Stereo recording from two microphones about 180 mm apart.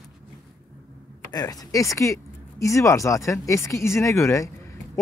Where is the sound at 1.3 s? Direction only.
20° left (ahead or behind).